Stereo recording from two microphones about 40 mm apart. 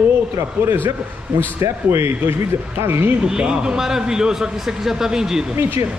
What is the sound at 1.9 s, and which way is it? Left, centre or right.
Speech, right.